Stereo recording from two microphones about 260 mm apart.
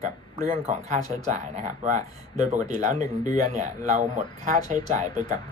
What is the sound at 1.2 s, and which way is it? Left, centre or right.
Speech, right.